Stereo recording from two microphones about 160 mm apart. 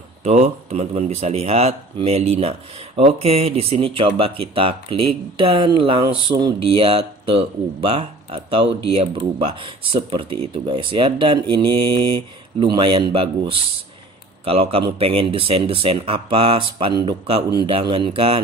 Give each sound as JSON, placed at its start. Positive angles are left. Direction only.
{"t": 0.2, "sound": "speech", "side_deg": -45}